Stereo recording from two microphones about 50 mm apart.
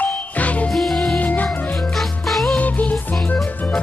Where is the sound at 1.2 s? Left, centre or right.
Left.